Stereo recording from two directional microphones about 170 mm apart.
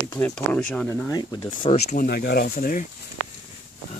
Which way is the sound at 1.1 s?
25° left (ahead or behind).